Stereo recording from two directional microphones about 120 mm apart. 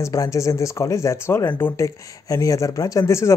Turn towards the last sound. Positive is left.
turn(degrees=25)  # may be behind; listen again after turning